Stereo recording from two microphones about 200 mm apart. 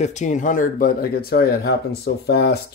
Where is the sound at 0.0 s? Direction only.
35° left (ahead or behind).